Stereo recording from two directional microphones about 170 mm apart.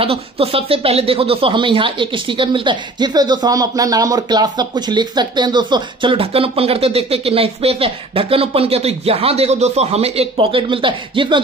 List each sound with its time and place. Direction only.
0.0 s speech: 35° right (ahead or behind)